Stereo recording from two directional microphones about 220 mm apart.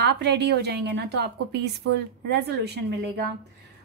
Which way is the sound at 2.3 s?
50° right (ahead or behind).